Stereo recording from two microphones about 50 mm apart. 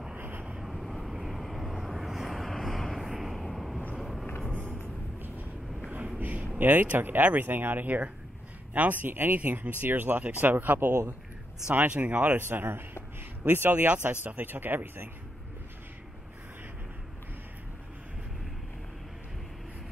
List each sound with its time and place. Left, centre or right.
0.6 s vehicle: centre
6.1 s a sound: right
6.6 s speech: right
10.9 s a man's voice: right
11.9 s speech: right
12.4 s speech: right
13.7 s speech: right
14.2 s speech: right